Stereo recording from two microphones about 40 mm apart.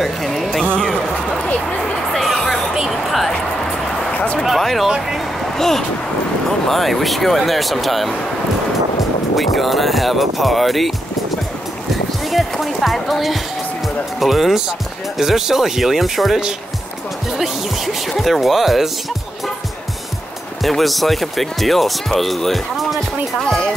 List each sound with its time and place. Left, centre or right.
0.0 s music: centre
0.7 s a sound: left
2.1 s music: centre
4.1 s a sound: left
4.5 s speech: centre
9.3 s speech: centre
11.9 s music: centre
14.2 s speech: centre
17.4 s speech: centre
20.6 s speech: centre